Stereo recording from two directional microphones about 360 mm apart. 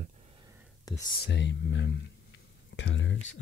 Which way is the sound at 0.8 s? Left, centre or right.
Centre.